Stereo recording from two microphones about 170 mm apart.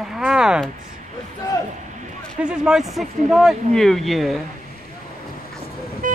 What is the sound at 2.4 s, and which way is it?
Speech, 5° right (ahead or behind).